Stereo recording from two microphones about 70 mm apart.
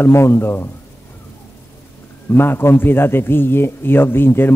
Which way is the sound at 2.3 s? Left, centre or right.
Left.